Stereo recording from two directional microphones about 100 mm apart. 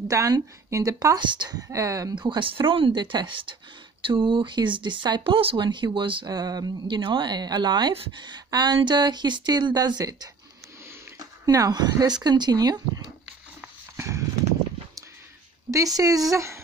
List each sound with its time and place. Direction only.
0.1 s a woman's voice: 35° right (ahead or behind)
2.1 s speech: 55° right (ahead or behind)
5.2 s speech: 65° right (ahead or behind)
6.2 s a woman's voice: 40° right (ahead or behind)
7.0 s speech: 50° right (ahead or behind)
11.4 s a woman's voice: 40° right (ahead or behind)
13.9 s horse: 30° right (ahead or behind)
15.7 s a woman's voice: 35° right (ahead or behind)